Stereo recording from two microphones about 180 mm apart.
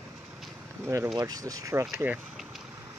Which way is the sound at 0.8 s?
15° right (ahead or behind).